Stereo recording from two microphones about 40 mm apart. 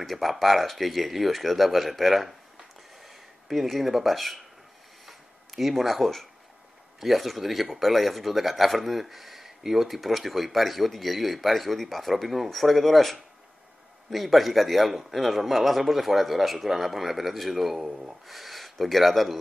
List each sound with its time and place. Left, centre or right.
0.0 s speech: centre
3.0 s a sound: centre
7.0 s speech: centre
17.8 s speech: centre
18.2 s speech: centre